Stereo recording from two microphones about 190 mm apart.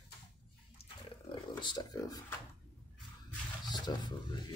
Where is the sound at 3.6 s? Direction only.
20° left (ahead or behind).